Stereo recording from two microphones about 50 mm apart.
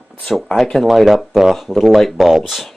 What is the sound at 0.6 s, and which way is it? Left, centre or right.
Speech, centre.